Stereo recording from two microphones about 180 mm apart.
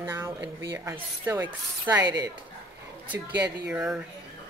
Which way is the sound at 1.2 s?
10° right (ahead or behind).